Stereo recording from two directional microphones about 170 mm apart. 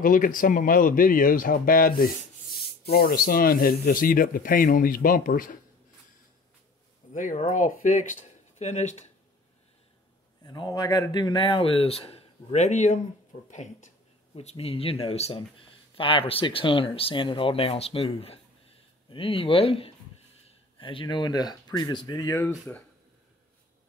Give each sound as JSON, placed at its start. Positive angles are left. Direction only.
{"t": 0.0, "sound": "speech", "side_deg": 55}
{"t": 7.1, "sound": "speech", "side_deg": 45}
{"t": 10.4, "sound": "speech", "side_deg": 25}